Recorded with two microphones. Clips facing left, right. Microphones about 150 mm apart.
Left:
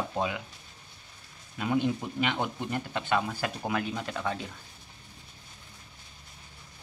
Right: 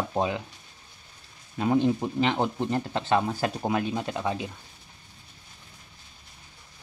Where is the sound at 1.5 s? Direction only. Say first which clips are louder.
Right 5 dB; 30° right (ahead or behind).